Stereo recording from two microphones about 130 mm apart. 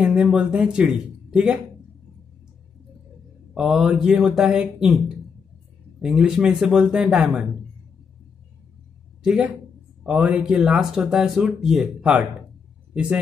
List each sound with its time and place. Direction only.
0.0 s speech: 5° right (ahead or behind)
3.5 s speech: 5° right (ahead or behind)
9.2 s speech: 5° right (ahead or behind)